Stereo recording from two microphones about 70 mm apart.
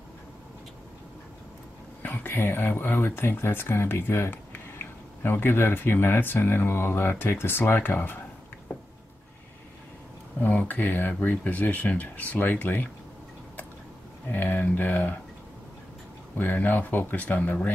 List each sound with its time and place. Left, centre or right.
2.0 s speech: left
10.4 s speech: left
14.3 s speech: left
16.3 s speech: left